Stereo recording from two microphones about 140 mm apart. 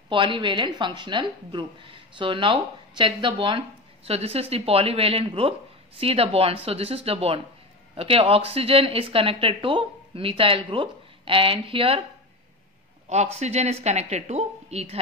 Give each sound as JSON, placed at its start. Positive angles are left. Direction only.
{"t": 0.1, "sound": "speech", "side_deg": -35}
{"t": 13.1, "sound": "speech", "side_deg": -50}